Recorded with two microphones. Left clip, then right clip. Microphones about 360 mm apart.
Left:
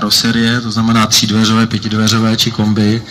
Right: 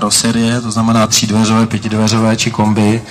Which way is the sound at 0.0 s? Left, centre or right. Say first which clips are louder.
Left 1 dB; centre.